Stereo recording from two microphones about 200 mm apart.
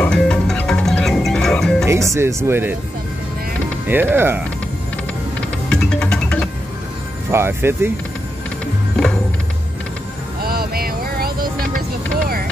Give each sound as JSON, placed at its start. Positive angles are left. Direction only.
{"t": 0.0, "sound": "music", "side_deg": 5}
{"t": 1.9, "sound": "speech", "side_deg": -15}
{"t": 3.8, "sound": "speech", "side_deg": -10}
{"t": 5.7, "sound": "music", "side_deg": 5}
{"t": 7.2, "sound": "speech", "side_deg": -10}
{"t": 10.4, "sound": "a sound", "side_deg": -50}